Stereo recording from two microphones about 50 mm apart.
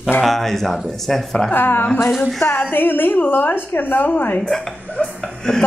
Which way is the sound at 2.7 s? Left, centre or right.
Left.